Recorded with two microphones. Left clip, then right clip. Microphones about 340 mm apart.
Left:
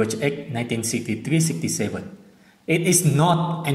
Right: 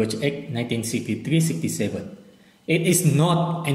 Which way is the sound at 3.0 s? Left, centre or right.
Left.